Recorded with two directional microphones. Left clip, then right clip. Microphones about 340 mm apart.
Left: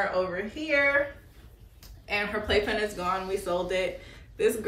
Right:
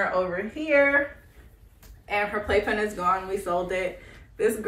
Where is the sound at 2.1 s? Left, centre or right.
Centre.